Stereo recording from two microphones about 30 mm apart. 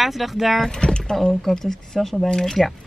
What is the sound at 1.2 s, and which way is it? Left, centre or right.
A woman's voice, centre.